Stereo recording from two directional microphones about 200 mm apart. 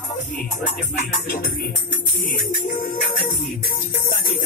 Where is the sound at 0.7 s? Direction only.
45° left (ahead or behind).